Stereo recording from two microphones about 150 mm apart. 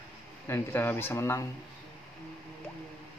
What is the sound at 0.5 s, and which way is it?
Speech, 15° left (ahead or behind).